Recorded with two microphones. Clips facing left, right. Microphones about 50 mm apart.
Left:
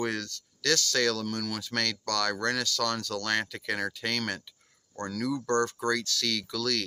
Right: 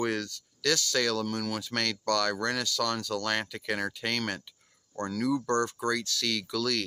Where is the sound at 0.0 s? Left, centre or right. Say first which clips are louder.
Right 1 dB; centre.